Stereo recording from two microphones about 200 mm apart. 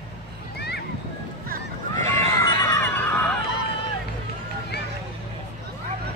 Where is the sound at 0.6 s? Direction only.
55° left (ahead or behind).